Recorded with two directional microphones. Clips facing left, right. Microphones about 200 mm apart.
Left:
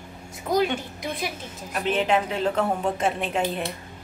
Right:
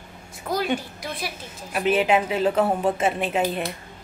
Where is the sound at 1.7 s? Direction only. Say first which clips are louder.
Right 3 dB; 10° right (ahead or behind).